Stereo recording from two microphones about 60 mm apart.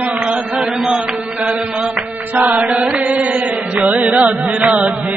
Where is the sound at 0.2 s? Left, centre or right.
Centre.